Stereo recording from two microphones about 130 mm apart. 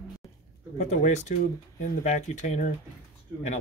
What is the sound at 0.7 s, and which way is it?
Speech, 65° left (ahead or behind).